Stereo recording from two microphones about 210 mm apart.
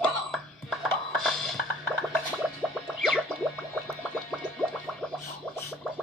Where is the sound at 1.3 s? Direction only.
Centre (ahead or behind).